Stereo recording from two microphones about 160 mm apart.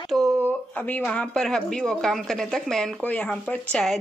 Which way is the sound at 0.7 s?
10° left (ahead or behind).